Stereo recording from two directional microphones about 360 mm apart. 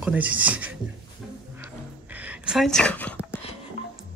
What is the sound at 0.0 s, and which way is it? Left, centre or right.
Speech, centre.